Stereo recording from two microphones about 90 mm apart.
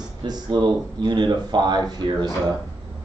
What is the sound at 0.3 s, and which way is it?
Speech, 60° right (ahead or behind).